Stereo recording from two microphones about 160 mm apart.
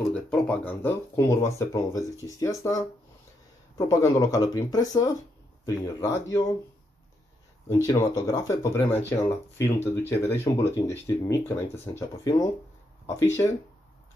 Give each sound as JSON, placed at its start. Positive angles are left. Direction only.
{"t": 0.1, "sound": "speech", "side_deg": 5}
{"t": 1.1, "sound": "speech", "side_deg": 20}
{"t": 7.8, "sound": "speech", "side_deg": 25}